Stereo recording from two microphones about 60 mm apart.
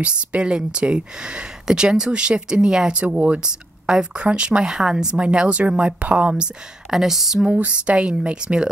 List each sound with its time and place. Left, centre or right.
0.0 s speech: centre
6.9 s speech: centre
7.4 s speech: right